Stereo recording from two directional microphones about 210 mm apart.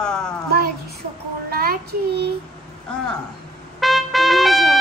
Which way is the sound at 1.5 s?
45° right (ahead or behind).